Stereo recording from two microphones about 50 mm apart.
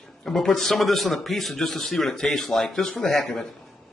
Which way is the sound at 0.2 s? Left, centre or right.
Centre.